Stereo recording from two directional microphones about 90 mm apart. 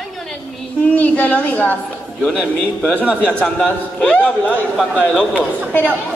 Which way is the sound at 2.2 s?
5° right (ahead or behind).